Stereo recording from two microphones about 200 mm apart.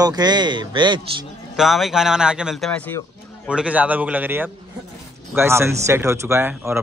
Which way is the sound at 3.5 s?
5° right (ahead or behind).